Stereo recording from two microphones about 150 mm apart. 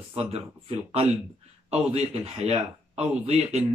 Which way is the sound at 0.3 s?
45° right (ahead or behind).